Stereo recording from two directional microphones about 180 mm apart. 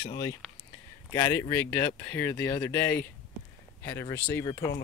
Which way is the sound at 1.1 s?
15° left (ahead or behind).